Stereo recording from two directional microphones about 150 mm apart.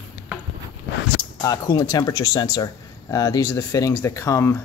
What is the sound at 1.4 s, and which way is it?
Speech, 25° left (ahead or behind).